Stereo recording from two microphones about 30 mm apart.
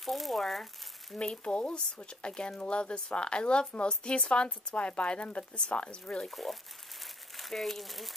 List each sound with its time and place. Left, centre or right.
0.0 s speech: centre
1.1 s speech: left
1.4 s speech: left
6.2 s speech: centre